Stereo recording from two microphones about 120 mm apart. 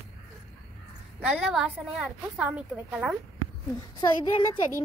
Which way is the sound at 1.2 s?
5° right (ahead or behind).